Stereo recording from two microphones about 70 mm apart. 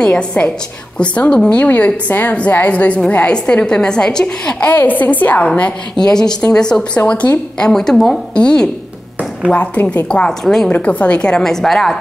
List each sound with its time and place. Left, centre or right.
0.0 s a woman's voice: centre
6.0 s a woman's voice: centre
10.7 s a woman's voice: centre